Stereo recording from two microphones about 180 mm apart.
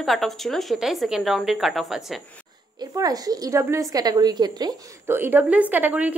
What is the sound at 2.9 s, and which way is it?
Speech, 20° right (ahead or behind).